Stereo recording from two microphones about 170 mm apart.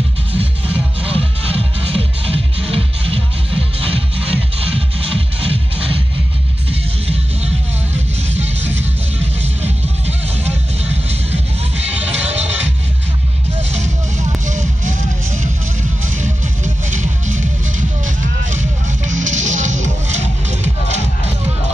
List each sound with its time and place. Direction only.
1.0 s music: 35° right (ahead or behind)
12.1 s music: 40° right (ahead or behind)
13.6 s a sound: 40° right (ahead or behind)
16.2 s music: 45° right (ahead or behind)
19.0 s music: 45° right (ahead or behind)